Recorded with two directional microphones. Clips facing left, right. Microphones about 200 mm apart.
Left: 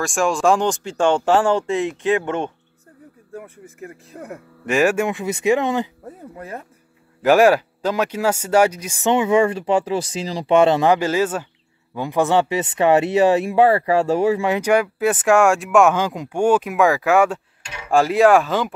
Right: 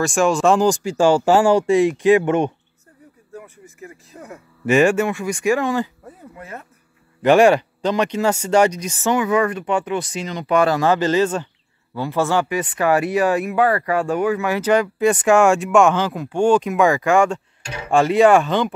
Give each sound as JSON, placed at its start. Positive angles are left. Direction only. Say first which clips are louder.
{"t": 0.0, "sound": "speech", "louder": "right 2 dB", "side_deg": 0}
{"t": 3.3, "sound": "speech", "louder": "left 3 dB", "side_deg": 55}
{"t": 4.6, "sound": "speech", "louder": "right 3 dB", "side_deg": 0}
{"t": 4.9, "sound": "speech", "louder": "right 1 dB", "side_deg": 20}
{"t": 6.3, "sound": "a sound", "louder": "left 3 dB", "side_deg": 35}
{"t": 7.2, "sound": "speech", "louder": "right 1 dB", "side_deg": 5}
{"t": 9.0, "sound": "speech", "louder": "left 2 dB", "side_deg": 25}
{"t": 14.6, "sound": "speech", "louder": "right 1 dB", "side_deg": 10}